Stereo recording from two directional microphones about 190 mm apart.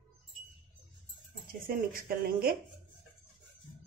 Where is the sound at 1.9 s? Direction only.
50° right (ahead or behind).